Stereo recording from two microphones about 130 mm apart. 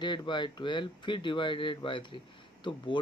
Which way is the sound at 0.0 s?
35° left (ahead or behind).